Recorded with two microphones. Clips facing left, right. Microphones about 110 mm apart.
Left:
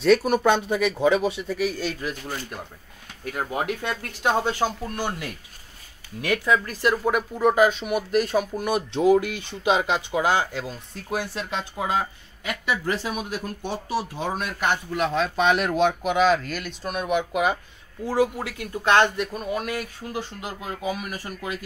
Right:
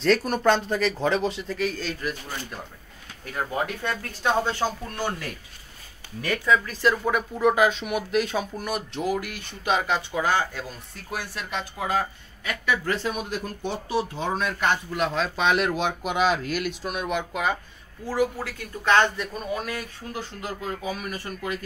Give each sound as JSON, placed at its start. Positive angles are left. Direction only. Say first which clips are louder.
{"t": 0.0, "sound": "speech", "louder": "left 3 dB", "side_deg": 5}
{"t": 3.3, "sound": "speech", "louder": "left 1 dB", "side_deg": 15}
{"t": 8.5, "sound": "speech", "louder": "left 5 dB", "side_deg": 20}
{"t": 17.3, "sound": "speech", "louder": "left 3 dB", "side_deg": 10}
{"t": 18.0, "sound": "speech", "louder": "left 2 dB", "side_deg": 25}